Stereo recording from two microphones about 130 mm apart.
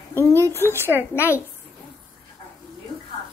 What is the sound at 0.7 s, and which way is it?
Speech, 15° right (ahead or behind).